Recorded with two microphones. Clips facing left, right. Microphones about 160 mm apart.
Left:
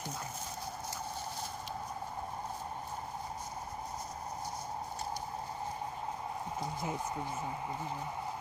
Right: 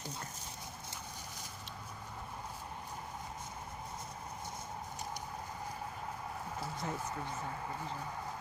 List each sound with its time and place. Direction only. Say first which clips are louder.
6.8 s speech: left 2 dB; 15° left (ahead or behind)